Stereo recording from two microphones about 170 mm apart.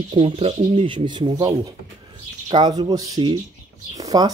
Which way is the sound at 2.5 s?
25° right (ahead or behind).